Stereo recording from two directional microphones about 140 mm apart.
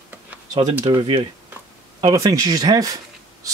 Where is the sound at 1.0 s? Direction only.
35° right (ahead or behind).